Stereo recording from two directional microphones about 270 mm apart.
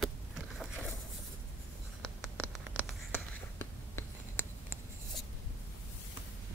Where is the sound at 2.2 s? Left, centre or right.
Centre.